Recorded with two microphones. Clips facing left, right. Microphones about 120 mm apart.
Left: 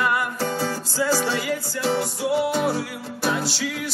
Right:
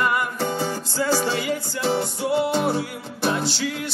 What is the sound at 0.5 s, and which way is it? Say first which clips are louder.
Music: even; 20° right (ahead or behind).